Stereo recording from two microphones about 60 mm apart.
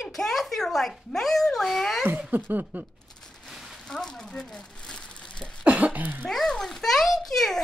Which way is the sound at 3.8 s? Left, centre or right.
Centre.